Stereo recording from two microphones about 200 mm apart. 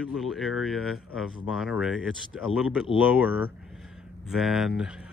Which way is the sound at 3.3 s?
90° left.